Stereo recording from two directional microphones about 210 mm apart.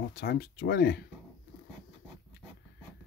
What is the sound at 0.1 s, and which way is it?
Speech, 45° left (ahead or behind).